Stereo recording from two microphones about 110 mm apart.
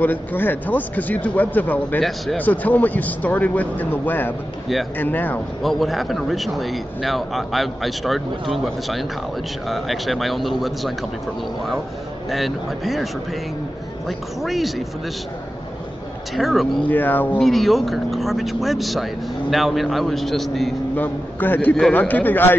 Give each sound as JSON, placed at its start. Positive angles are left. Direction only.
{"t": 0.0, "sound": "a man's voice", "side_deg": 15}
{"t": 2.0, "sound": "a man's voice", "side_deg": 0}
{"t": 2.3, "sound": "a man's voice", "side_deg": 15}
{"t": 5.6, "sound": "a man's voice", "side_deg": 0}
{"t": 12.3, "sound": "a man's voice", "side_deg": 0}
{"t": 16.3, "sound": "a man's voice", "side_deg": 0}
{"t": 16.8, "sound": "a man's voice", "side_deg": 15}
{"t": 17.4, "sound": "a man's voice", "side_deg": 0}
{"t": 20.9, "sound": "a man's voice", "side_deg": 15}